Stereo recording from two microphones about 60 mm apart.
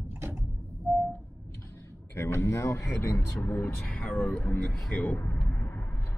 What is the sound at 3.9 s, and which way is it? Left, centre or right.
Speech, left.